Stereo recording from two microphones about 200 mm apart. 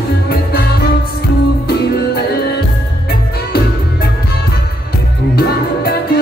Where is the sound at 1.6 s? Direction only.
50° left (ahead or behind).